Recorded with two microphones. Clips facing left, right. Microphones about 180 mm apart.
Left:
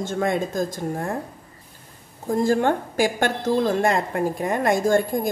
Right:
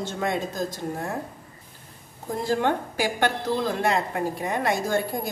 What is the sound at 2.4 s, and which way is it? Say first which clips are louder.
A woman's voice: left 2 dB; 50° left (ahead or behind).